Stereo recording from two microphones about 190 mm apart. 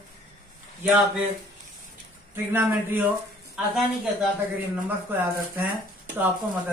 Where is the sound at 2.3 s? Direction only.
10° right (ahead or behind).